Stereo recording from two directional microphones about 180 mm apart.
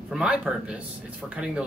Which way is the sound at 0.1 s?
5° right (ahead or behind).